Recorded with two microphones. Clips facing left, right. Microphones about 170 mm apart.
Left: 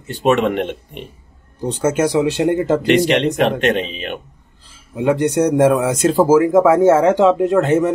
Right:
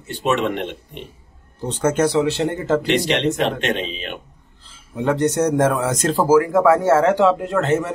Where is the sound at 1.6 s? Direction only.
10° left (ahead or behind).